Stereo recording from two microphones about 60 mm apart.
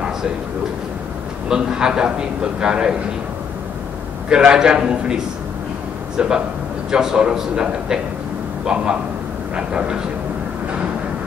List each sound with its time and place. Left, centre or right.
1.5 s a man's voice: centre
4.3 s a man's voice: centre
9.6 s a man's voice: centre